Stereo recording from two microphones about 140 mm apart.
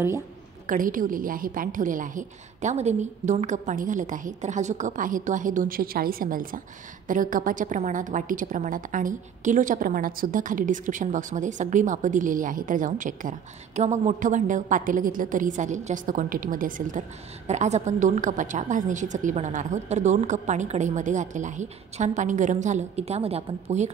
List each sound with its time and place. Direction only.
0.7 s a woman's voice: 75° right (ahead or behind)
17.5 s a woman's voice: 55° right (ahead or behind)